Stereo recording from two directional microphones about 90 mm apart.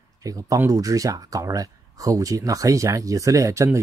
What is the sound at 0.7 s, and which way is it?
Speech, 40° right (ahead or behind).